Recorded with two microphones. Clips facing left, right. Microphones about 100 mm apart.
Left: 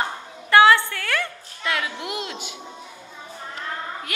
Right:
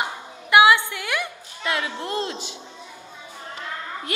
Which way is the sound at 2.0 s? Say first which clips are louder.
Right 3 dB; 35° right (ahead or behind).